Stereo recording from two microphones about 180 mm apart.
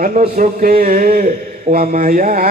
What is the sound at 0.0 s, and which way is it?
Speech, 50° right (ahead or behind).